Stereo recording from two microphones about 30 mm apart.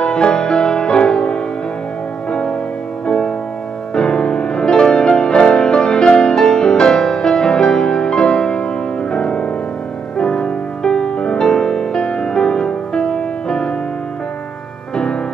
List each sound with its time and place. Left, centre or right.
0.0 s music: left
3.1 s music: left